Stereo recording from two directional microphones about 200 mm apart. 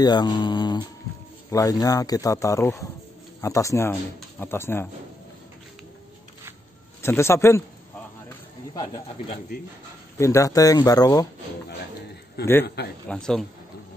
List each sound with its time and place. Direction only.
0.0 s speech: 20° left (ahead or behind)
7.0 s speech: 15° left (ahead or behind)
8.3 s snake: 20° left (ahead or behind)
10.1 s speech: 15° left (ahead or behind)
12.8 s speech: 55° left (ahead or behind)
13.1 s speech: 5° left (ahead or behind)